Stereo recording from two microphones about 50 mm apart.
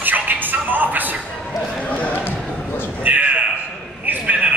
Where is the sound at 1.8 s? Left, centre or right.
Left.